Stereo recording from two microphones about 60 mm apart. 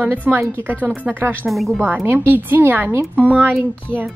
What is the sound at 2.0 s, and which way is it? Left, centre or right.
Speech, right.